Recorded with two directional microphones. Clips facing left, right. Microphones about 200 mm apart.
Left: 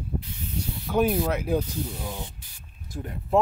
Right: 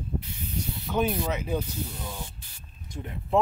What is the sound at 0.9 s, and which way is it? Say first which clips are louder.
Speech: left 4 dB; 10° left (ahead or behind).